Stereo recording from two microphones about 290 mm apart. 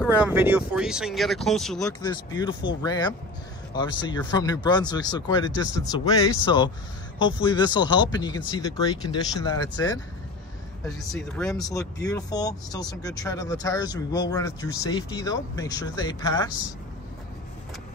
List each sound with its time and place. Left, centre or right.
0.0 s speech: centre
1.9 s speech: centre
11.0 s speech: centre